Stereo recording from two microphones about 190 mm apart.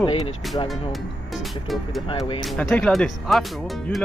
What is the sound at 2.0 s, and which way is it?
Speech, 25° left (ahead or behind).